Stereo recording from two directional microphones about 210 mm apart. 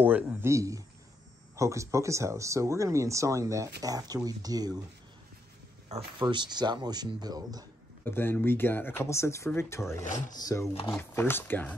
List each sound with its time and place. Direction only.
0.0 s speech: 10° right (ahead or behind)
5.9 s speech: 25° right (ahead or behind)
8.0 s speech: 10° left (ahead or behind)
10.0 s speech: 35° left (ahead or behind)
10.3 s speech: 15° left (ahead or behind)